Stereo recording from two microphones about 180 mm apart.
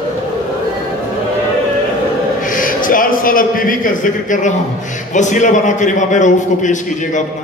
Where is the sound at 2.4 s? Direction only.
50° left (ahead or behind).